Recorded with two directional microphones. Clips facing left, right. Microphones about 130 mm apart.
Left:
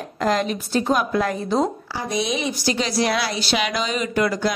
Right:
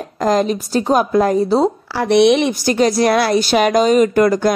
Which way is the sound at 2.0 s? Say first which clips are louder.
Right 13 dB; 70° right (ahead or behind).